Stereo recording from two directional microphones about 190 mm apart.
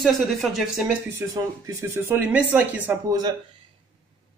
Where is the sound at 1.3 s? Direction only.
15° right (ahead or behind).